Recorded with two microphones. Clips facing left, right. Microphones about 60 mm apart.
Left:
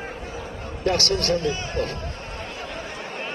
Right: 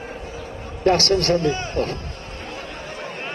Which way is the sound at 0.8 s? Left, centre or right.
Right.